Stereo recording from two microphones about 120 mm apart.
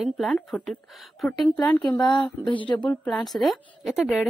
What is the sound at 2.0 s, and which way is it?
Speech, 40° left (ahead or behind).